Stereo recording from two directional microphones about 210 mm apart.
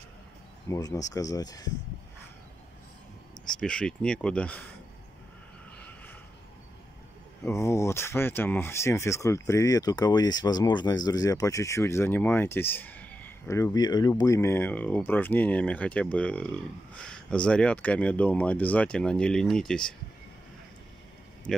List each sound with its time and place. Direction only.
0.7 s speech: 15° left (ahead or behind)
3.5 s speech: 5° left (ahead or behind)
7.4 s speech: 15° left (ahead or behind)